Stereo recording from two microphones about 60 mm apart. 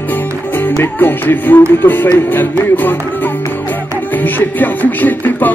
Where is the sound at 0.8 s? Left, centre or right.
Left.